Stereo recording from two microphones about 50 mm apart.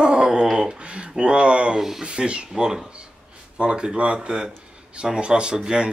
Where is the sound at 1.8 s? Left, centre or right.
Centre.